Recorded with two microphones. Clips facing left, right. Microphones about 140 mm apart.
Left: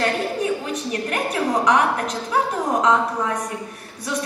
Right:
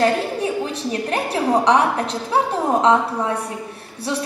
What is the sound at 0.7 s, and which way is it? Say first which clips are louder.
A woman's voice: right 2 dB; 30° right (ahead or behind).